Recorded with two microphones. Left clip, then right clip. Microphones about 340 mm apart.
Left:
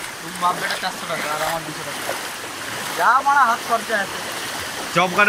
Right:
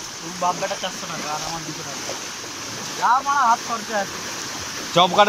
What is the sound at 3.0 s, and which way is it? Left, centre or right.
Speech, centre.